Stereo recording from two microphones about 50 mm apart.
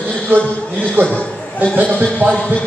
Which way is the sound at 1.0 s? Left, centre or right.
Left.